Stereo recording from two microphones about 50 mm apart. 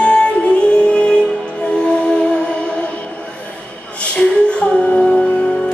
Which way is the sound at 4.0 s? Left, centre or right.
Left.